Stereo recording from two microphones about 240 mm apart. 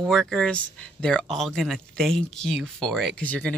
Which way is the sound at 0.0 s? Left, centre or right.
Centre.